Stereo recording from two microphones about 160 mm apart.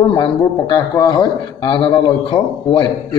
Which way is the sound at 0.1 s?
30° left (ahead or behind).